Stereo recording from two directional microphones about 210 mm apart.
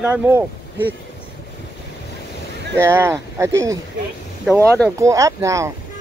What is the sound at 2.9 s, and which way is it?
Speech, 10° right (ahead or behind).